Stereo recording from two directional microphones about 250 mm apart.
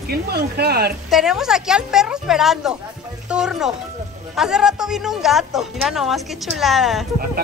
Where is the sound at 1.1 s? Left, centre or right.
Centre.